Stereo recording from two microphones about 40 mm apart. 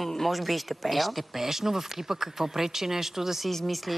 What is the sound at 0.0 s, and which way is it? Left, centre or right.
Speech, centre.